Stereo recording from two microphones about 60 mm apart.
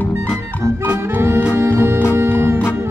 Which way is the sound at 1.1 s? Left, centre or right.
Right.